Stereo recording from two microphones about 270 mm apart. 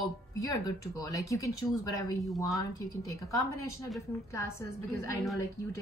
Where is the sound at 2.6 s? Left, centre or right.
Centre.